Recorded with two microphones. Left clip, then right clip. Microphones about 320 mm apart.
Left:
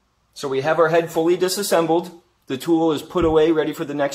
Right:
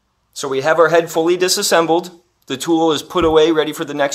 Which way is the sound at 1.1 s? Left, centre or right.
Right.